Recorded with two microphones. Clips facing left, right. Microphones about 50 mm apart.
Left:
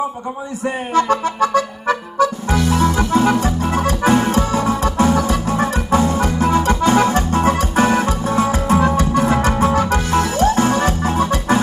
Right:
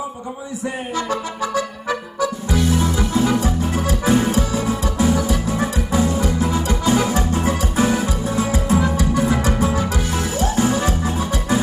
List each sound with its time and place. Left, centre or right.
0.9 s music: left